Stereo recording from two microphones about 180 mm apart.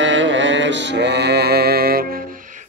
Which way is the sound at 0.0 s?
90° right.